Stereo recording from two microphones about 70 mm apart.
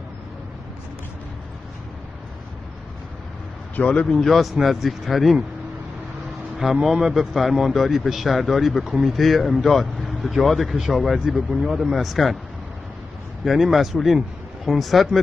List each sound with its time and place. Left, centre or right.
3.7 s a man's voice: centre
4.1 s a man's voice: centre
6.6 s a man's voice: centre
13.4 s a man's voice: centre